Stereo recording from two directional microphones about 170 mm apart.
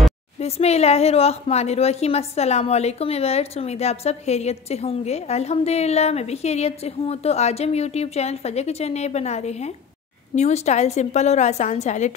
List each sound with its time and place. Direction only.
0.4 s a woman's voice: 35° left (ahead or behind)